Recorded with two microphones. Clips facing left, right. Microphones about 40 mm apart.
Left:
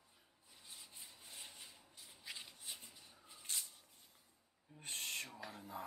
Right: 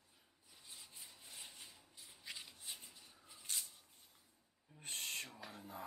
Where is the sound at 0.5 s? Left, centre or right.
Centre.